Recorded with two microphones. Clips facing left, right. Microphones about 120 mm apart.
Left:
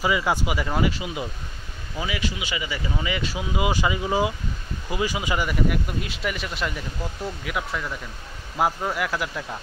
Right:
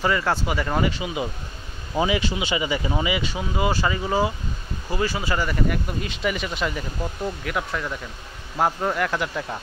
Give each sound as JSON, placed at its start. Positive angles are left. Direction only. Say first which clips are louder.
{"t": 0.0, "sound": "speech", "louder": "even", "side_deg": 10}
{"t": 2.0, "sound": "speech", "louder": "right 6 dB", "side_deg": -30}
{"t": 3.1, "sound": "speech", "louder": "right 2 dB", "side_deg": 0}